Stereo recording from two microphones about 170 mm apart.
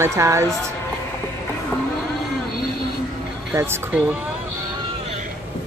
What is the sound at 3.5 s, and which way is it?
Speech, 15° right (ahead or behind).